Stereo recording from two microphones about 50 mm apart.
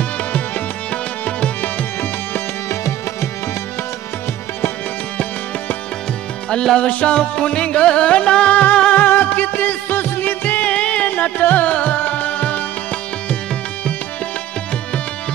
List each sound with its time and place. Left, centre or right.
2.7 s tabla: left
6.5 s music: centre
8.9 s music: left
10.7 s music: left
11.1 s music: left